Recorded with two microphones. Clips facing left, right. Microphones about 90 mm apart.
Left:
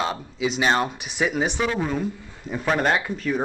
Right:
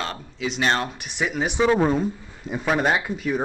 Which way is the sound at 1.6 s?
30° right (ahead or behind).